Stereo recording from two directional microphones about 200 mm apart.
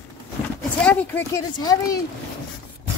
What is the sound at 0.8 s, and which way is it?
Speech, 10° left (ahead or behind).